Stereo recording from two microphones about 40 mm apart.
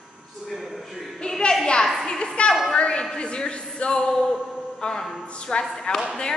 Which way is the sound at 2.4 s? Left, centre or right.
Left.